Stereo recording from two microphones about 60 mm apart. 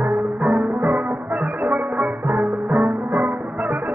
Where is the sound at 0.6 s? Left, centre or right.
Right.